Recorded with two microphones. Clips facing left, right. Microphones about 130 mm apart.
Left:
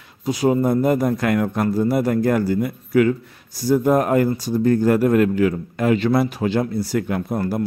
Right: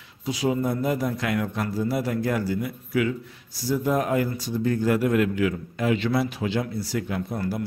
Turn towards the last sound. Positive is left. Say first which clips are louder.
# left 6 dB
turn(degrees=50)  # may be behind; listen again after turning